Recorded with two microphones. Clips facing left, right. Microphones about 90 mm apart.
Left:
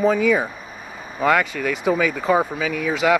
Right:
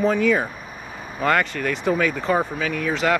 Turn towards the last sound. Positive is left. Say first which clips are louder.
# left 2 dB
turn(degrees=5)  # may be behind; listen again after turning